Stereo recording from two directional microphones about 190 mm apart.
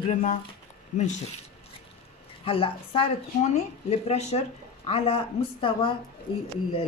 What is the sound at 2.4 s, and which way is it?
A woman's voice, 30° left (ahead or behind).